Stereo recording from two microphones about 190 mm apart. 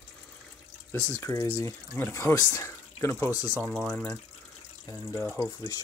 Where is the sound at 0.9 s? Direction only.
10° left (ahead or behind).